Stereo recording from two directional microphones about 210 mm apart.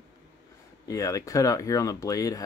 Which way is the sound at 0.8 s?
15° left (ahead or behind).